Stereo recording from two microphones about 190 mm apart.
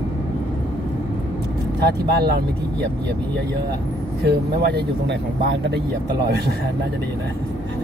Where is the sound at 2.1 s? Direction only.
55° right (ahead or behind).